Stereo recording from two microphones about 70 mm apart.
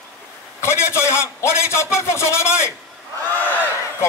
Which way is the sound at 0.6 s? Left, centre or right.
Left.